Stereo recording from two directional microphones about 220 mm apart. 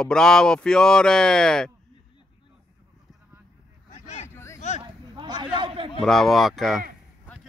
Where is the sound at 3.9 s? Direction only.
30° left (ahead or behind).